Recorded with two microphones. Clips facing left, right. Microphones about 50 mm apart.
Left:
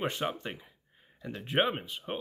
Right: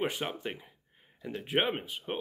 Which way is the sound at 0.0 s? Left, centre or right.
Centre.